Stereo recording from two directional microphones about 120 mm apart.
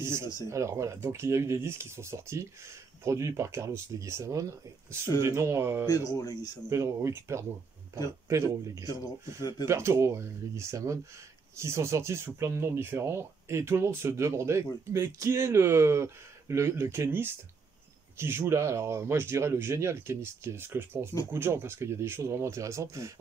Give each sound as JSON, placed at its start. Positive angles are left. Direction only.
{"t": 0.0, "sound": "speech", "side_deg": -20}
{"t": 5.9, "sound": "speech", "side_deg": 30}
{"t": 6.7, "sound": "speech", "side_deg": -25}
{"t": 9.4, "sound": "speech", "side_deg": 35}
{"t": 9.7, "sound": "speech", "side_deg": -25}